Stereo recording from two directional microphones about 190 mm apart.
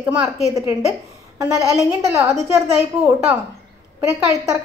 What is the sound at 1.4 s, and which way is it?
A woman's voice, 15° right (ahead or behind).